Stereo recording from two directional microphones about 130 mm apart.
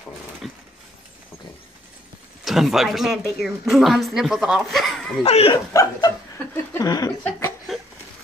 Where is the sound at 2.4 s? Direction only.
Centre (ahead or behind).